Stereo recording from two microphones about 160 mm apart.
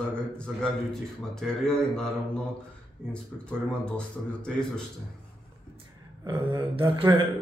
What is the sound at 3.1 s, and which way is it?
A man's voice, 5° left (ahead or behind).